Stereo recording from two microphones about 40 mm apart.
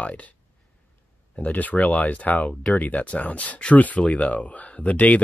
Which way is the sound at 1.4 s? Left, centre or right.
Left.